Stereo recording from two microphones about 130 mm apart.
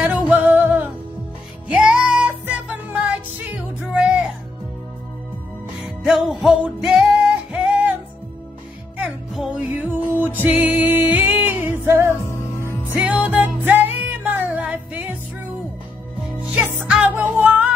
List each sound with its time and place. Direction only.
0.0 s music: 10° right (ahead or behind)
5.8 s music: centre (ahead or behind)
8.9 s music: 5° right (ahead or behind)
9.8 s music: 15° right (ahead or behind)
12.1 s music: 20° left (ahead or behind)
12.9 s music: 10° right (ahead or behind)
16.3 s music: 15° right (ahead or behind)